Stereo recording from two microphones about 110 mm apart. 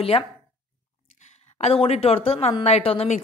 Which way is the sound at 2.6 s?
70° left (ahead or behind).